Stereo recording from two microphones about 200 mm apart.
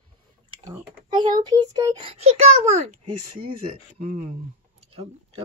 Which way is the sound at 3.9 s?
35° right (ahead or behind).